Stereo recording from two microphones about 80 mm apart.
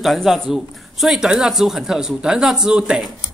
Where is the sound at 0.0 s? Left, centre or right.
Centre.